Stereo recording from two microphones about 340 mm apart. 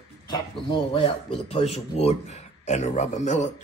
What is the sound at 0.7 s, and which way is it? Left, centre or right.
Speech, centre.